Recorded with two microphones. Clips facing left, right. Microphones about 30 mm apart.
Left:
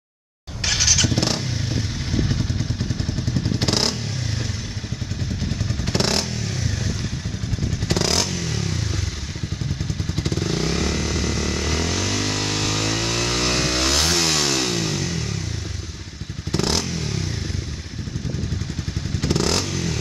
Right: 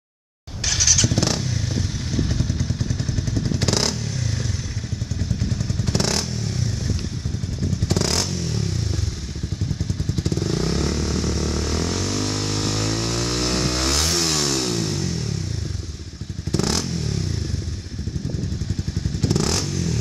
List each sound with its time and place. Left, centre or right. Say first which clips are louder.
0.6 s motorcycle: left 1 dB; left
5.5 s motorcycle: left 1 dB; left
6.3 s vehicle: even; left
7.8 s motorcycle: left 2 dB; left
8.3 s vehicle: even; left
10.1 s motorcycle: even; left
16.5 s vehicle: left 1 dB; left
16.8 s motorcycle: even; left
19.2 s vehicle: left 1 dB; left